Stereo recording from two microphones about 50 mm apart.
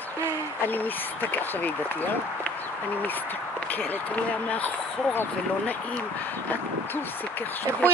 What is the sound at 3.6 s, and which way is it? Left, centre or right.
Speech, left.